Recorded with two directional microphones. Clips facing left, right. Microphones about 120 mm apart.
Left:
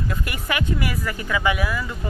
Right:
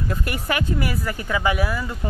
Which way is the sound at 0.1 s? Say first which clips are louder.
Right 2 dB; 40° right (ahead or behind).